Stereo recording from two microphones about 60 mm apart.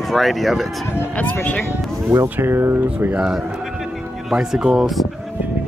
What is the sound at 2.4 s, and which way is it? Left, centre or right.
Speech, right.